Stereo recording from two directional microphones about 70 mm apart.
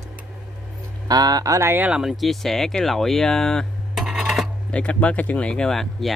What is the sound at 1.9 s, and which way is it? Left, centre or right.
Speech, centre.